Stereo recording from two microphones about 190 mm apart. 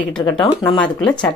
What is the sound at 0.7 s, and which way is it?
Speech, 5° left (ahead or behind).